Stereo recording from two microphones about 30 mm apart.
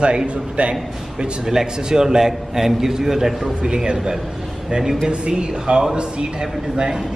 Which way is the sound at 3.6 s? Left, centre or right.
Right.